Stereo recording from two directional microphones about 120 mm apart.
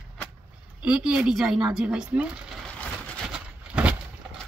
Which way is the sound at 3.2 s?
10° right (ahead or behind).